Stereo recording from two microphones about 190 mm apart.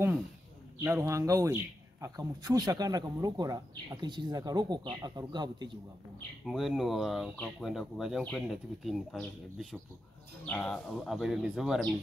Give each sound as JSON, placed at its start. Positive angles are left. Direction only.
{"t": 0.7, "sound": "a man's voice", "side_deg": -15}
{"t": 6.4, "sound": "speech", "side_deg": 0}